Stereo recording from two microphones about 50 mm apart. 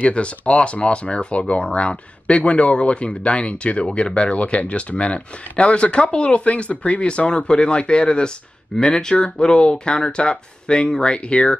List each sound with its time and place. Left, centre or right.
0.0 s speech: left